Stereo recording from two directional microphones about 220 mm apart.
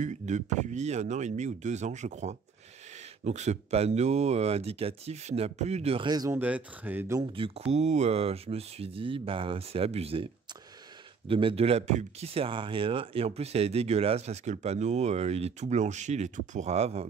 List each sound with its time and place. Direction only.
0.0 s speech: 30° right (ahead or behind); by 7.2 s 10° right (ahead or behind)
7.3 s speech: 25° right (ahead or behind)